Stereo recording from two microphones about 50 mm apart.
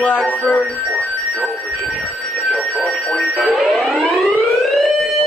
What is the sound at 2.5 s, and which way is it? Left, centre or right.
Fire alarm, left.